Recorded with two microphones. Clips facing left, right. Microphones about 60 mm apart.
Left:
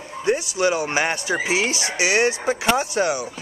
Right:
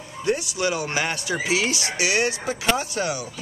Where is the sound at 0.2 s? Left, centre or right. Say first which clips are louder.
Left 3 dB; centre.